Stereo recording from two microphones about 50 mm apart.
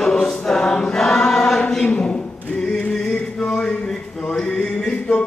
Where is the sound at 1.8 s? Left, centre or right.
Left.